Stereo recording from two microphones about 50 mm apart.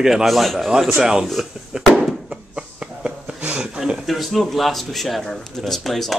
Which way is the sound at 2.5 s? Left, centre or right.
Right.